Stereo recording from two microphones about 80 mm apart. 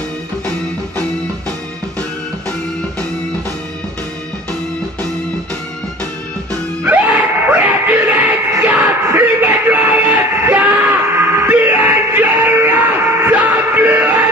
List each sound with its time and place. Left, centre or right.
6.9 s screaming: right
8.6 s yell: right
9.0 s music: right